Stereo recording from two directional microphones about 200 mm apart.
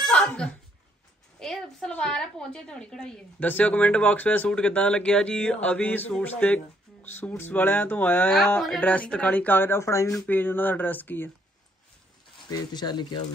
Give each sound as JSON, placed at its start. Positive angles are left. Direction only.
{"t": 0.0, "sound": "a sound", "side_deg": 5}
{"t": 1.4, "sound": "a woman's voice", "side_deg": 5}
{"t": 12.4, "sound": "speech", "side_deg": 20}